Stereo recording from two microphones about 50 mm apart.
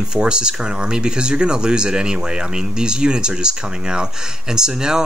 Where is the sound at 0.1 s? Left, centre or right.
Centre.